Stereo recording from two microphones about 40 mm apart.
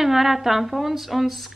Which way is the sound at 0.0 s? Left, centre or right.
Centre.